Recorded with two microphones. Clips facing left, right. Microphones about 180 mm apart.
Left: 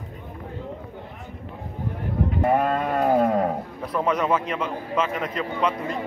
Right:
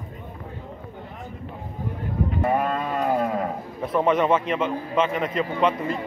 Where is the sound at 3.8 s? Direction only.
Centre (ahead or behind).